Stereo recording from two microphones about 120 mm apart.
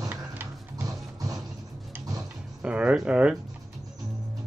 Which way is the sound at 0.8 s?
30° right (ahead or behind).